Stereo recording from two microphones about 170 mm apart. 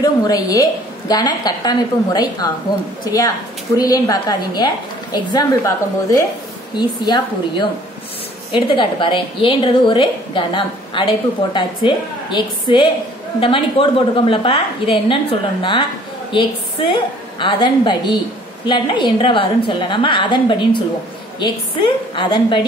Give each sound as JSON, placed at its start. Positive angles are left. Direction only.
{"t": 0.0, "sound": "a woman's voice", "side_deg": 20}
{"t": 3.7, "sound": "a woman's voice", "side_deg": 20}
{"t": 22.1, "sound": "a woman's voice", "side_deg": 30}